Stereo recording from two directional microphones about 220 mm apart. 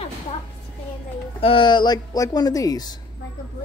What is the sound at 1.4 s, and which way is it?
A man's voice, 25° left (ahead or behind).